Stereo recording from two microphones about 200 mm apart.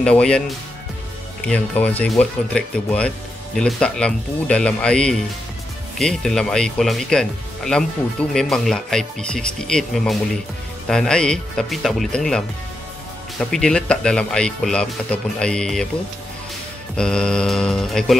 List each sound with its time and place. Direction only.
0.0 s speech: 5° left (ahead or behind)
1.4 s speech: 5° left (ahead or behind)
16.9 s speech: 5° left (ahead or behind)